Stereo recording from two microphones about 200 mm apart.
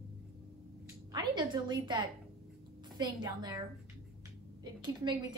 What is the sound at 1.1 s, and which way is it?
A woman's voice, 25° right (ahead or behind).